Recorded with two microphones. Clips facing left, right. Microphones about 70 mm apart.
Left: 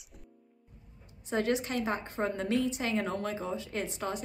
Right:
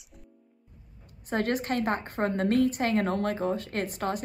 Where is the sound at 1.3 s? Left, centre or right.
Right.